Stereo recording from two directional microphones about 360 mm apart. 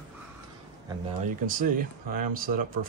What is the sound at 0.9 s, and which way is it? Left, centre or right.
Speech, centre.